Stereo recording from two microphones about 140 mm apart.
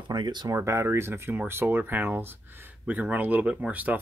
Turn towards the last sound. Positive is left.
turn(degrees=-10)  # may be behind; listen again after turning